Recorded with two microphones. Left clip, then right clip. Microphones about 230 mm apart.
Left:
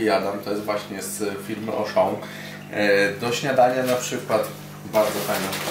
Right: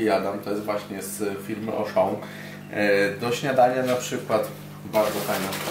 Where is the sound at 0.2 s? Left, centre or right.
Centre.